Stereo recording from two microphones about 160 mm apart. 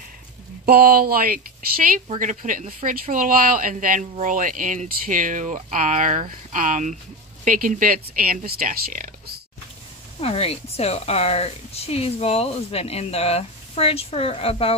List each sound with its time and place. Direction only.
0.7 s speech: 70° right (ahead or behind)
2.0 s speech: 55° right (ahead or behind)
10.2 s speech: 40° left (ahead or behind)